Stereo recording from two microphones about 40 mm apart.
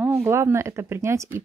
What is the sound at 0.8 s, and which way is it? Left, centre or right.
Speech, right.